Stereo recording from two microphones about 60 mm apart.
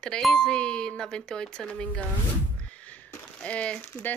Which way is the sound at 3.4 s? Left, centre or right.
Centre.